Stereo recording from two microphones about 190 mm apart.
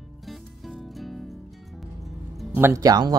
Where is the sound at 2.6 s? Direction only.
15° right (ahead or behind).